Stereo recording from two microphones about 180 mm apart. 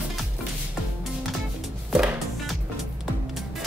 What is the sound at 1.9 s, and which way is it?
Music, 5° right (ahead or behind).